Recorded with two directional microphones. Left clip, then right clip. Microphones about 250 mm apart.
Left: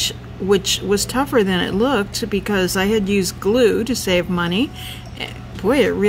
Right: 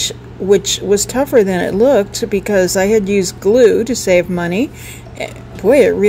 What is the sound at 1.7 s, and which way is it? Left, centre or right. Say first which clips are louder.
Speech: right 7 dB; centre.